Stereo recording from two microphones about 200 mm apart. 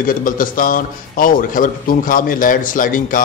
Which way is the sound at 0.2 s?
45° left (ahead or behind).